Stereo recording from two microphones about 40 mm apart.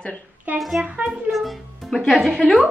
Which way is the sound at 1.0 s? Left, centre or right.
Right.